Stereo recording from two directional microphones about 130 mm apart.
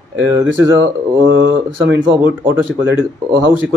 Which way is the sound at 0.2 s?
25° right (ahead or behind).